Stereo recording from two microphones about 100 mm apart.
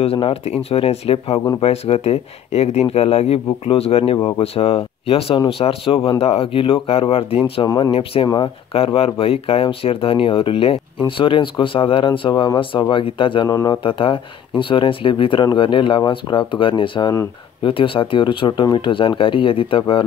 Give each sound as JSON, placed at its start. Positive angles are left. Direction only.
{"t": 0.0, "sound": "speech", "side_deg": 80}
{"t": 7.6, "sound": "speech", "side_deg": 45}
{"t": 7.9, "sound": "speech", "side_deg": 70}
{"t": 13.5, "sound": "speech", "side_deg": 35}
{"t": 13.8, "sound": "speech", "side_deg": 60}